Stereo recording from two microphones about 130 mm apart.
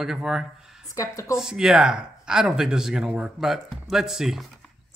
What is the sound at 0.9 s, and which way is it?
Speech, 25° left (ahead or behind).